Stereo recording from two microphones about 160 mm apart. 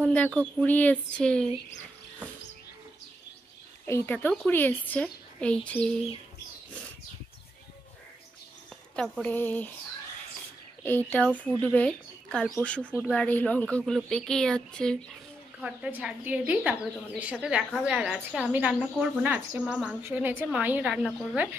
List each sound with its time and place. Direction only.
0.0 s a woman's voice: 10° left (ahead or behind)
3.8 s a woman's voice: 15° left (ahead or behind)
8.9 s a woman's voice: centre (ahead or behind)
10.8 s a woman's voice: 10° left (ahead or behind)
15.6 s a woman's voice: 5° right (ahead or behind)